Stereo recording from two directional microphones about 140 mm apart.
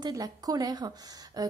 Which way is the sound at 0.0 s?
25° right (ahead or behind).